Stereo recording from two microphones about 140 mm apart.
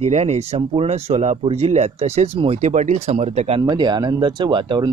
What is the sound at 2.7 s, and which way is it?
Speech, 60° right (ahead or behind).